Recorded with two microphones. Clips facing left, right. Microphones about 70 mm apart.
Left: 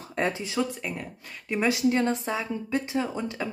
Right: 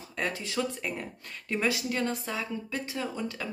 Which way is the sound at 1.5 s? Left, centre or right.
Left.